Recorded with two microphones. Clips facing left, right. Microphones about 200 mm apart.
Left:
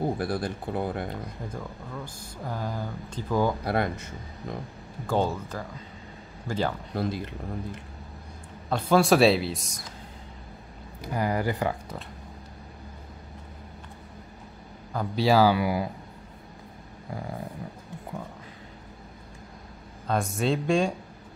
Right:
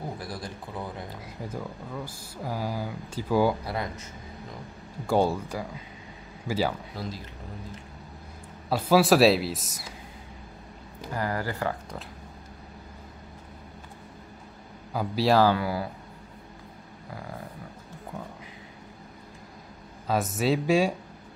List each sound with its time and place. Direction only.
0.2 s speech: 60° left (ahead or behind)
1.2 s speech: 5° right (ahead or behind)
3.6 s speech: 65° left (ahead or behind)
5.0 s speech: 10° right (ahead or behind)
6.9 s speech: 55° left (ahead or behind)
8.6 s speech: 5° right (ahead or behind)
11.0 s speech: 15° left (ahead or behind)
14.9 s speech: 5° right (ahead or behind); by 15.9 s 15° left (ahead or behind)
20.1 s speech: 5° right (ahead or behind)